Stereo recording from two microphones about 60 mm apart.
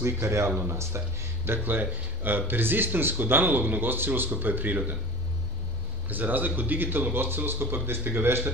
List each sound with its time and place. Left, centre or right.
0.0 s speech: right
6.0 s speech: right